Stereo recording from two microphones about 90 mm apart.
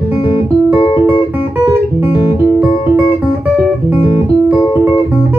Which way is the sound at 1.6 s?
20° right (ahead or behind).